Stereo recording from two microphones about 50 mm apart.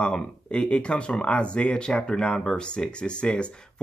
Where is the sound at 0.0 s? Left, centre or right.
Centre.